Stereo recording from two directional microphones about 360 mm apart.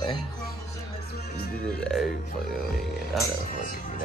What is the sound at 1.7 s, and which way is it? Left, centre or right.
Speech, centre.